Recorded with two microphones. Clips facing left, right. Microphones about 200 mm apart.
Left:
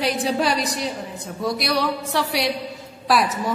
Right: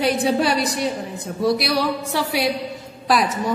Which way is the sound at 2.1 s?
Centre (ahead or behind).